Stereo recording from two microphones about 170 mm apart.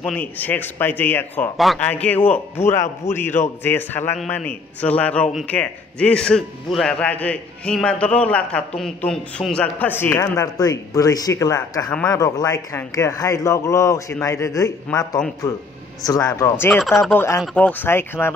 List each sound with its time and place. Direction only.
0.0 s speech: 10° left (ahead or behind)
1.6 s a man's voice: centre (ahead or behind)